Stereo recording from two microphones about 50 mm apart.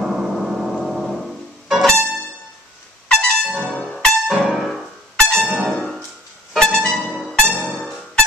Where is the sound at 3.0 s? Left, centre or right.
Left.